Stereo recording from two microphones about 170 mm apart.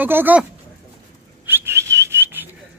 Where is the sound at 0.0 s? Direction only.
10° right (ahead or behind).